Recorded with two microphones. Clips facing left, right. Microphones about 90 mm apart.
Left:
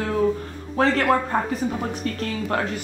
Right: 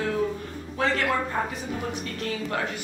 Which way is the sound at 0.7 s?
45° left (ahead or behind).